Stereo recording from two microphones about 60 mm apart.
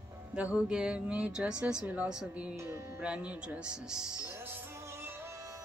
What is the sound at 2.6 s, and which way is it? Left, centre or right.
Music, right.